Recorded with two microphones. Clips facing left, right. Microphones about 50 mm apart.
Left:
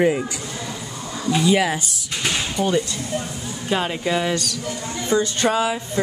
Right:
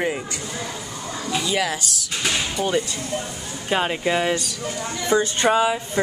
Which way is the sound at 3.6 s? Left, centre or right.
Centre.